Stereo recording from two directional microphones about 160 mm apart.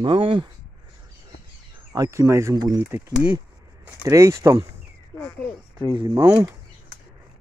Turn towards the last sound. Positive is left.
turn(degrees=-15)  # may be behind; listen again after turning